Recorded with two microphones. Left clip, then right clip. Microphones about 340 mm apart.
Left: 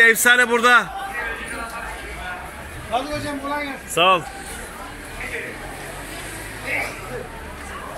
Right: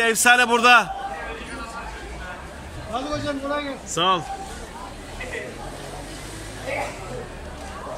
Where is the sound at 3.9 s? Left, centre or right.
Centre.